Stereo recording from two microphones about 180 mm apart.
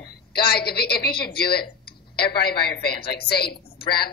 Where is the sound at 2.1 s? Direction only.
25° left (ahead or behind).